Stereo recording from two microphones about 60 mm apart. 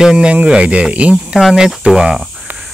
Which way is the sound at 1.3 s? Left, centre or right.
Centre.